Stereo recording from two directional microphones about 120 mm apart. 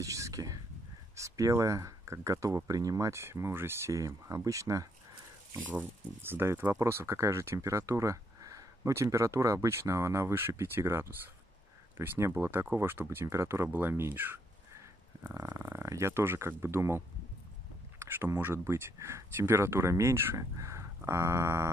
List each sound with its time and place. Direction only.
0.0 s whispering: 25° right (ahead or behind)
1.1 s speech: 25° right (ahead or behind)
5.6 s speech: 15° right (ahead or behind)